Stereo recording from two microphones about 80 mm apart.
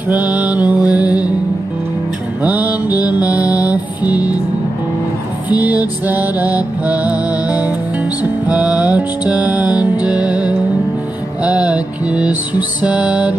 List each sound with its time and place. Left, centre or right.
0.1 s music: centre
2.4 s music: centre
5.5 s music: centre